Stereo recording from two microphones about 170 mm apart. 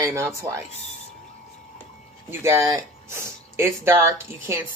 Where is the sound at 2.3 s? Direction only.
15° right (ahead or behind).